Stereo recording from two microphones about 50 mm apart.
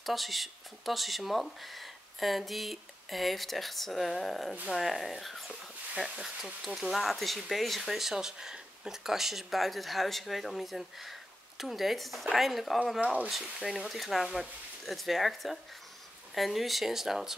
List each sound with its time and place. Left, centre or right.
0.0 s speech: centre
13.0 s speech: right
13.3 s speech: centre